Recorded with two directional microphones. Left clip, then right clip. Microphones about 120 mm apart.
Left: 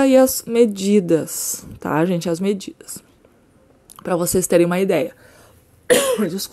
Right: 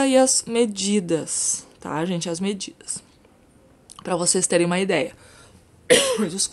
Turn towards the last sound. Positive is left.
turn(degrees=40)  # may be behind; listen again after turning